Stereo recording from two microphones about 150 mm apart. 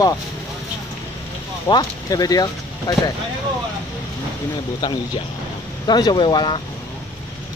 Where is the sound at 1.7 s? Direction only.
25° left (ahead or behind).